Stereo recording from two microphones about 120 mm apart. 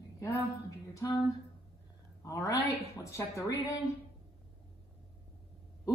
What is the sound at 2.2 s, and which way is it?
Speech, 30° left (ahead or behind).